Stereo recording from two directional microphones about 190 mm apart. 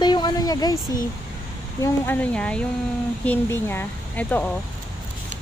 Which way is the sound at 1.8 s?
10° left (ahead or behind).